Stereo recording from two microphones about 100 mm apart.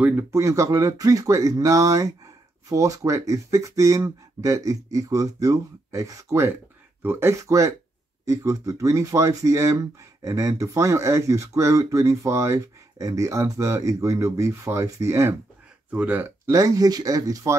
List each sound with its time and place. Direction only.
0.0 s speech: 20° right (ahead or behind)
0.3 s speech: 30° right (ahead or behind)
15.9 s speech: 15° right (ahead or behind)
16.5 s speech: 35° right (ahead or behind)